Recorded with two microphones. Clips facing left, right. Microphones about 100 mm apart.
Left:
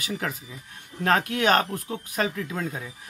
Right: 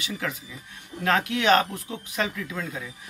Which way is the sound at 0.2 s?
40° left (ahead or behind).